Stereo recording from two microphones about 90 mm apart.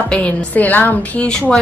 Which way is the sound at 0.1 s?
15° left (ahead or behind).